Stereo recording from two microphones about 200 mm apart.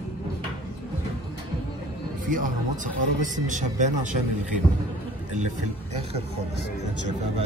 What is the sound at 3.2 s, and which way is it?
Speech, 40° right (ahead or behind).